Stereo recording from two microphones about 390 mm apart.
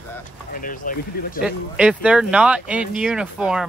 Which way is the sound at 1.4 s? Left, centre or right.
Centre.